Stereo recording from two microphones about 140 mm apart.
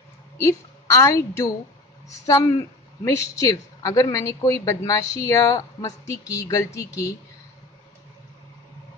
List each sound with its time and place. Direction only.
0.4 s a woman's voice: 20° left (ahead or behind)